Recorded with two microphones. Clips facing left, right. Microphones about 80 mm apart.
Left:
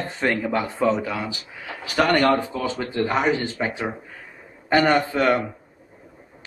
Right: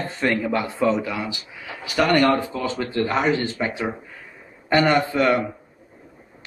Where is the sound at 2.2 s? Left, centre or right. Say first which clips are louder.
Even; left.